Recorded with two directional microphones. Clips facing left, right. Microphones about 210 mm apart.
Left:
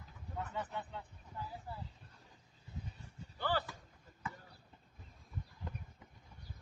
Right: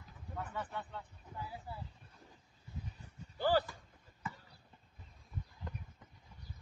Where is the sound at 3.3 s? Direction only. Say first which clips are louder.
Right 6 dB; 40° right (ahead or behind).